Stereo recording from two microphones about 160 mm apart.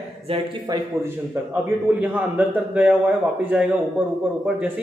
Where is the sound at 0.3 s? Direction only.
35° right (ahead or behind).